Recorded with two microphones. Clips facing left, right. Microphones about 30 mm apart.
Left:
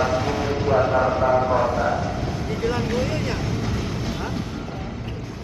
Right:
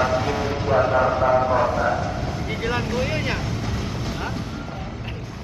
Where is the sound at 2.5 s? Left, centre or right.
Centre.